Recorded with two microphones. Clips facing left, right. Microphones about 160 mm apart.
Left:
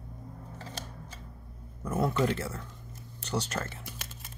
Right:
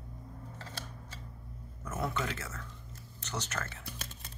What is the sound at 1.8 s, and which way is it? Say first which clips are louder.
Speech: left 7 dB; 35° left (ahead or behind).